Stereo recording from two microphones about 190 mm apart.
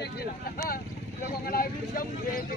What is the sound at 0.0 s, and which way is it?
Speech, 55° left (ahead or behind).